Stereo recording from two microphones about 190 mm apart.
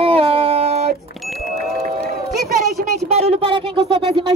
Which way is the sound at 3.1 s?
30° right (ahead or behind).